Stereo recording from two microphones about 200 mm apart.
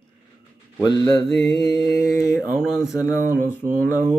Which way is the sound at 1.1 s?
Centre (ahead or behind).